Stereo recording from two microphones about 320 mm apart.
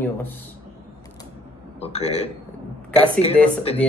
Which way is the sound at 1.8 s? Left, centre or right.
Centre.